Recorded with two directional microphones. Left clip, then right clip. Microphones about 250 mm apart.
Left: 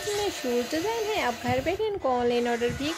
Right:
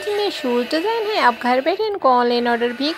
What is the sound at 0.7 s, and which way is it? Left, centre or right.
Speech, centre.